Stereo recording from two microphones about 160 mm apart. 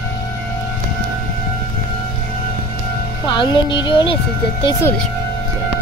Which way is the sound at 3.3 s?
30° left (ahead or behind).